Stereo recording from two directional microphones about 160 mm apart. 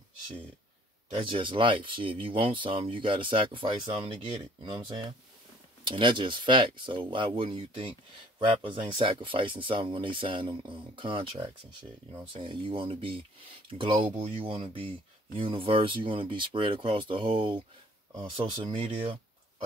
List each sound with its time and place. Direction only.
1.1 s speech: 30° right (ahead or behind)